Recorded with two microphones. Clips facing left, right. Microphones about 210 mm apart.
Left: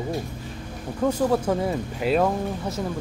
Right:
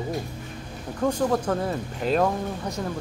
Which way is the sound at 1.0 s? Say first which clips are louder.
Left 2 dB; 10° left (ahead or behind).